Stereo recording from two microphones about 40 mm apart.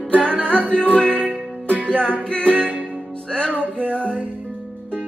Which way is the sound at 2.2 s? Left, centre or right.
Left.